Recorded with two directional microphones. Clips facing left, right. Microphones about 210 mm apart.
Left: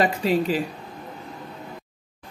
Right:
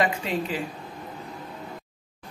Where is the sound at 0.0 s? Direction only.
35° left (ahead or behind).